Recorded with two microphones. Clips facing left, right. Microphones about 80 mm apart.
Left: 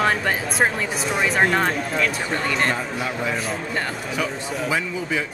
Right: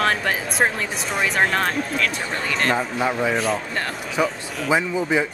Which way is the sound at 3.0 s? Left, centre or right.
Right.